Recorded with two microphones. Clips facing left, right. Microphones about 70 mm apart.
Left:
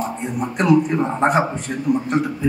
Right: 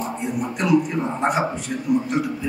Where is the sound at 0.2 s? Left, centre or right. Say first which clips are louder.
Left 2 dB; left.